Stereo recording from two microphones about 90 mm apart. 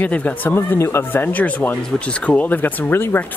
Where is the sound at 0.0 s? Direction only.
20° left (ahead or behind).